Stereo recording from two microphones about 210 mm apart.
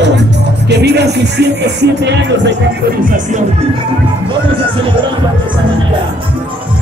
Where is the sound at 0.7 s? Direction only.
55° right (ahead or behind).